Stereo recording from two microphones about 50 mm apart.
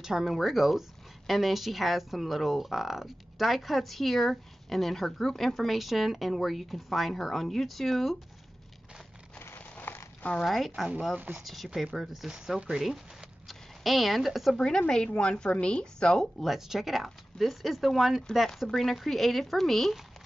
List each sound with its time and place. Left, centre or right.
0.0 s speech: centre
9.6 s a sound: left
10.4 s speech: centre
12.3 s speech: centre
14.6 s a woman's voice: centre
16.3 s speech: centre